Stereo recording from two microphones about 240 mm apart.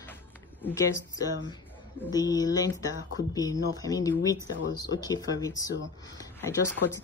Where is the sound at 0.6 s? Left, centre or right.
Centre.